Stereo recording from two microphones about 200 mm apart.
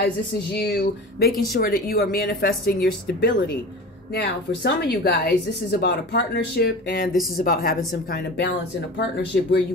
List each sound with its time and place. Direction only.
0.0 s speech: 50° left (ahead or behind)